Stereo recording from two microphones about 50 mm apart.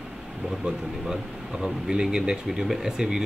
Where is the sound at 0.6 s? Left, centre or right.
Centre.